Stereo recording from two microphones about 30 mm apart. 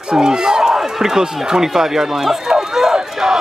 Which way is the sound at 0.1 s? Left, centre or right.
Right.